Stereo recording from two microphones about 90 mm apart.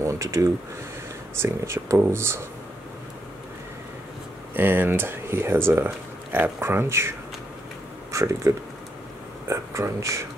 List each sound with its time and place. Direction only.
0.0 s speech: 35° right (ahead or behind)
4.6 s speech: 25° right (ahead or behind)